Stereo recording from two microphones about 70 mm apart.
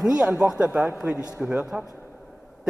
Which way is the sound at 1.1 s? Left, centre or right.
Left.